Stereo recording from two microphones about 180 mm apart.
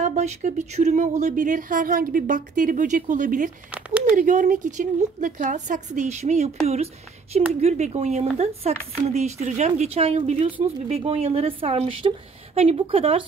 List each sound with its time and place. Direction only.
0.0 s speech: 40° right (ahead or behind)
7.6 s speech: 40° right (ahead or behind)